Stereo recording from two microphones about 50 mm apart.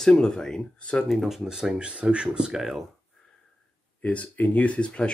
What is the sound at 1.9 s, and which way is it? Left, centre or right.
Speech, right.